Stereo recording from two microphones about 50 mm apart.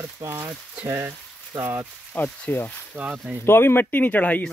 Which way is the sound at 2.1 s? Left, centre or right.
Left.